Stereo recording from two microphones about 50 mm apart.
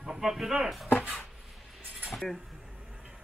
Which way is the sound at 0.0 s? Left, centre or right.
Centre.